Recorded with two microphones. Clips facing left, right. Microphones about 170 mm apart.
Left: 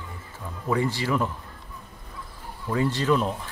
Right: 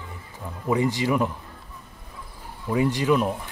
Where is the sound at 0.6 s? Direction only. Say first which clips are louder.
Right 3 dB; 15° right (ahead or behind).